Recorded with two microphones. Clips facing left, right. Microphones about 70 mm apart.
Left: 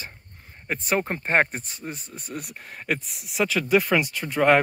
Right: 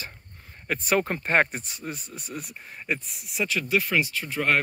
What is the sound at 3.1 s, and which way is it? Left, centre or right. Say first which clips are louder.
Speech: left 5 dB; left.